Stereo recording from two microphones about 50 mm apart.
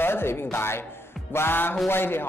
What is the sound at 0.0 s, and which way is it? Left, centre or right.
Speech, left.